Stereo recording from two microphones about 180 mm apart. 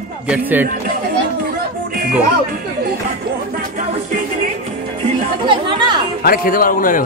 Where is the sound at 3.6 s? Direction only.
45° right (ahead or behind).